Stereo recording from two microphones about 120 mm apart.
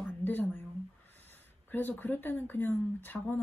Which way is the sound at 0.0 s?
15° left (ahead or behind).